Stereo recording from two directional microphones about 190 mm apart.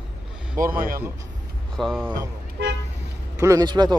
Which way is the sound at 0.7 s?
50° right (ahead or behind).